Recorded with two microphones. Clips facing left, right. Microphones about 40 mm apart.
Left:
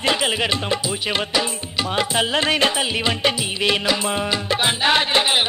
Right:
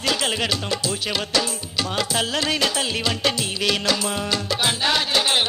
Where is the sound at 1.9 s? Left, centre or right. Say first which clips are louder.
Left 4 dB; left.